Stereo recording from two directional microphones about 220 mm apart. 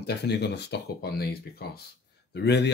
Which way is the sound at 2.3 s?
50° left (ahead or behind).